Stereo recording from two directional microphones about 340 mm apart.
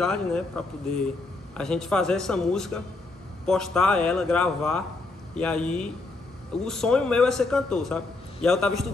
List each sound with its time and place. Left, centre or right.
0.0 s a man's voice: centre